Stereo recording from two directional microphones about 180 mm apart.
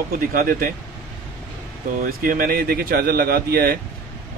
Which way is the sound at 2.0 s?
50° right (ahead or behind).